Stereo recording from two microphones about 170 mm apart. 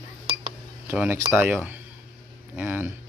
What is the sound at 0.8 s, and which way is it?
Speech, 10° right (ahead or behind).